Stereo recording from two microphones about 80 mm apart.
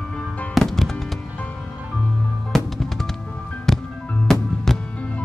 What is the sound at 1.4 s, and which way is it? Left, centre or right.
Music, centre.